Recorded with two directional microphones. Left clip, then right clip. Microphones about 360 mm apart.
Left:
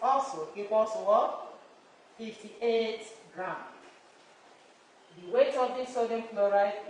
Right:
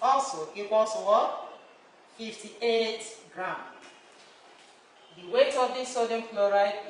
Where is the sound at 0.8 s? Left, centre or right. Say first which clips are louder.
Right 2 dB; centre.